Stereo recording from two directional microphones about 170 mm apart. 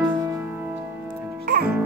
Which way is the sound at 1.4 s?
65° right (ahead or behind).